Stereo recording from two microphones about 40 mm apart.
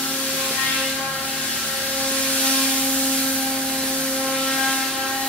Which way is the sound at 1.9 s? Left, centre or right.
Left.